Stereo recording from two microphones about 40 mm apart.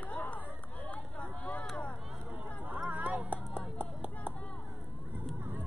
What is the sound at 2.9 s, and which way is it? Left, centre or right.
Music, right.